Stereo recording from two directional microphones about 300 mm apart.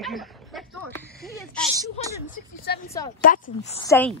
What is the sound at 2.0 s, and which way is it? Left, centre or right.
Speech, centre.